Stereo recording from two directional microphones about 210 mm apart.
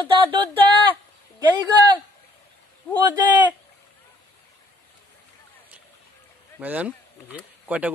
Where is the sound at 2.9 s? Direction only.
20° right (ahead or behind).